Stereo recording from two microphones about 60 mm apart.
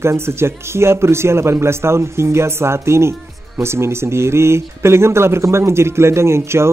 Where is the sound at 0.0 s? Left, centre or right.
Right.